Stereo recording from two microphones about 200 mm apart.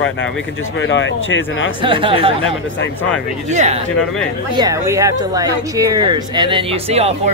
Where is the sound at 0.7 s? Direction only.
65° left (ahead or behind).